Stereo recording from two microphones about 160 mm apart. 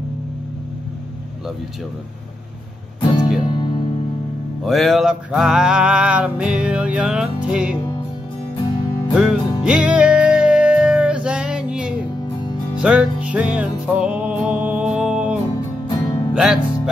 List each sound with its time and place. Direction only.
3.0 s music: 30° left (ahead or behind)
4.6 s music: centre (ahead or behind)
9.1 s music: 5° right (ahead or behind)
15.9 s music: 25° left (ahead or behind)
16.3 s speech: 5° right (ahead or behind)